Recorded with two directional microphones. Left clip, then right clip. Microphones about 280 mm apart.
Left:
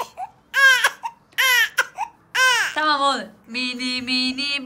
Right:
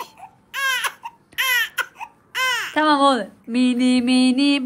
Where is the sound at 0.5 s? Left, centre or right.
Centre.